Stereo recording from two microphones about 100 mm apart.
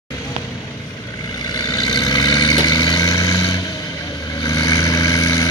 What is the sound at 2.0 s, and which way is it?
Vehicle, 45° left (ahead or behind).